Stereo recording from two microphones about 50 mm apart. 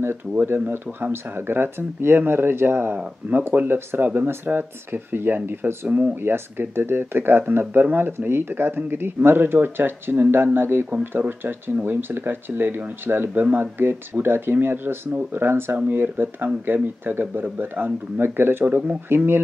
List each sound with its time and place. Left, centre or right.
1.1 s speech: right
10.9 s speech: right
18.2 s speech: right
18.7 s speech: right
19.0 s speech: right